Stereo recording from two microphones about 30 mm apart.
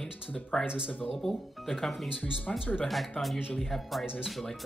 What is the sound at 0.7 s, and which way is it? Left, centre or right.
Speech, right.